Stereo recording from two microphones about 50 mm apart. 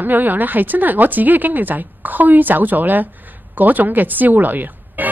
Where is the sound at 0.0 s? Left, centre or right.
Right.